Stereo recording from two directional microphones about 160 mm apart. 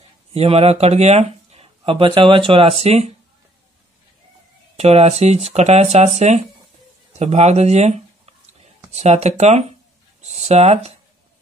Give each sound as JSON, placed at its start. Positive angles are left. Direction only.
{"t": 0.3, "sound": "speech", "side_deg": -40}
{"t": 4.7, "sound": "speech", "side_deg": -40}